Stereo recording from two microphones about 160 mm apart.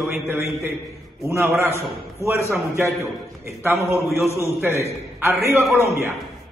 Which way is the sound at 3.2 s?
15° right (ahead or behind).